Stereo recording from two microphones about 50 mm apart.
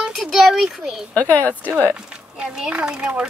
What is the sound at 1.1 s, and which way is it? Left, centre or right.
Speech, right.